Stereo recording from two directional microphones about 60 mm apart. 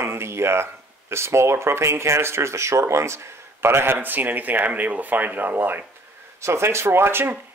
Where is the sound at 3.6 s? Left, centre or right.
Right.